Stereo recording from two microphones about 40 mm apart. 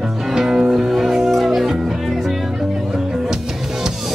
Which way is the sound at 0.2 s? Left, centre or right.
Centre.